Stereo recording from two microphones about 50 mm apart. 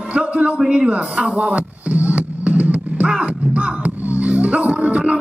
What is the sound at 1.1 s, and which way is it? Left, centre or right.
Music, right.